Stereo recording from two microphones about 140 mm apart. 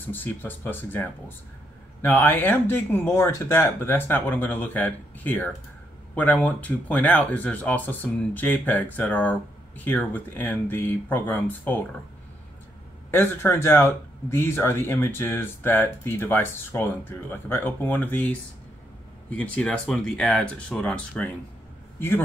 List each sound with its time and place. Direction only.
0.1 s speech: 15° left (ahead or behind)
13.1 s speech: 15° left (ahead or behind)